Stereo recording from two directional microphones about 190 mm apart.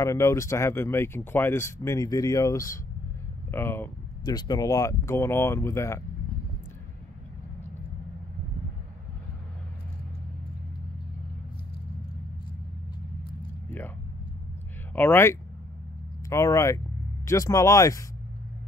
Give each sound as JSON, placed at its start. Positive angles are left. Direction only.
{"t": 0.0, "sound": "speech", "side_deg": 15}
{"t": 13.7, "sound": "vehicle", "side_deg": 10}
{"t": 15.0, "sound": "speech", "side_deg": 10}